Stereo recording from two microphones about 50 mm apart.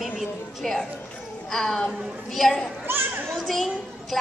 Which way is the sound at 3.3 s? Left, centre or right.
Centre.